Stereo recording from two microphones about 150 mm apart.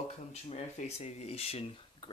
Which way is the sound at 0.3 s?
50° left (ahead or behind).